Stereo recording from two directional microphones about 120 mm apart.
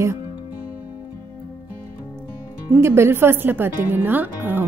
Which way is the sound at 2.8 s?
20° right (ahead or behind).